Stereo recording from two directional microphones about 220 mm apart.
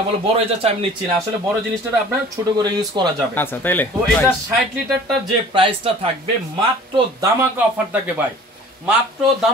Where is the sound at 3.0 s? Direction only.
20° right (ahead or behind).